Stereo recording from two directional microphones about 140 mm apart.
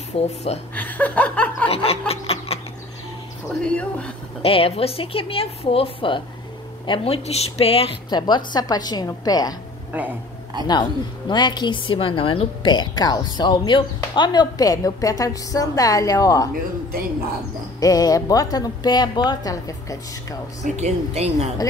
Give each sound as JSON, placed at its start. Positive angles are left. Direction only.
{"t": 0.2, "sound": "a woman's voice", "side_deg": 50}
{"t": 0.7, "sound": "chuckle", "side_deg": 10}
{"t": 1.7, "sound": "snicker", "side_deg": 45}
{"t": 3.6, "sound": "speech", "side_deg": 10}
{"t": 4.4, "sound": "a woman's voice", "side_deg": 45}
{"t": 10.7, "sound": "a woman's voice", "side_deg": 30}
{"t": 17.7, "sound": "a woman's voice", "side_deg": 25}
{"t": 20.6, "sound": "speech", "side_deg": -50}